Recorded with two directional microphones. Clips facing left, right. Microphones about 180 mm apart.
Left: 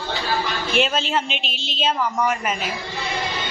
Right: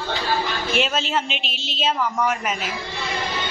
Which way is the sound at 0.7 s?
Centre (ahead or behind).